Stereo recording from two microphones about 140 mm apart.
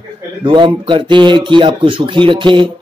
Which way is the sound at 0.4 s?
35° right (ahead or behind).